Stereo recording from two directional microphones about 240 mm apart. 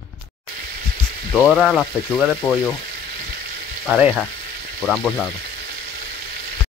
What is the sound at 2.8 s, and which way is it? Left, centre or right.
Frying, right.